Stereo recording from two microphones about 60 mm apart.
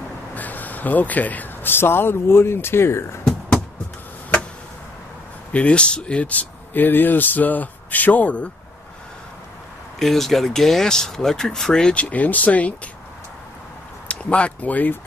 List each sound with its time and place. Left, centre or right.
0.3 s speech: left
5.5 s speech: left
9.9 s speech: centre
11.9 s speech: left
14.0 s speech: centre